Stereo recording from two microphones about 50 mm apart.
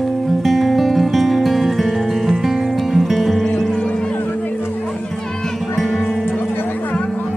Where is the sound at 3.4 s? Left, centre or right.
Centre.